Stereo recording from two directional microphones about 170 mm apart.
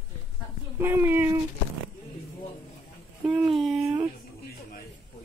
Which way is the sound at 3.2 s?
Centre (ahead or behind).